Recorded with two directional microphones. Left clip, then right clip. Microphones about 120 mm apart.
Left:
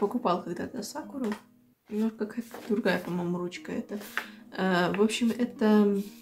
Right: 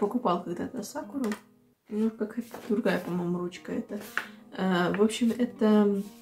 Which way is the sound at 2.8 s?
35° left (ahead or behind).